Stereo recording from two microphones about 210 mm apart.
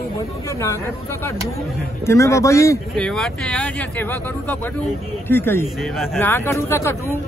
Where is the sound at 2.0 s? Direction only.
15° left (ahead or behind).